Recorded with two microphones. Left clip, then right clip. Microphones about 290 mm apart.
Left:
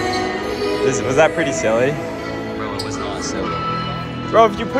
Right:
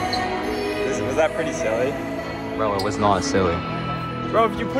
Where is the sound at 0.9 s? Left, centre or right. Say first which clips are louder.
Left 7 dB; left.